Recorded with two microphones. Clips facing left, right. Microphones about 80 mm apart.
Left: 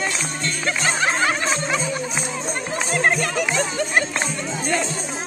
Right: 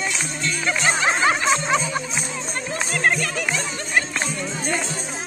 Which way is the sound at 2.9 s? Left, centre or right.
Left.